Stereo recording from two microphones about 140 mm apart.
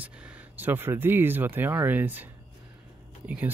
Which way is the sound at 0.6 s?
15° right (ahead or behind).